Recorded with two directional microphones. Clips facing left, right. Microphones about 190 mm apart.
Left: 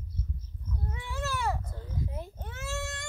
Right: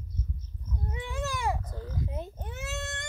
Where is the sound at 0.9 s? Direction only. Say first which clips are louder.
Right 2 dB; 15° right (ahead or behind).